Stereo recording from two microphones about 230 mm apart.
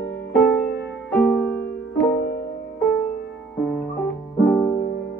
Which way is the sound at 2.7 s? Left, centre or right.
Centre.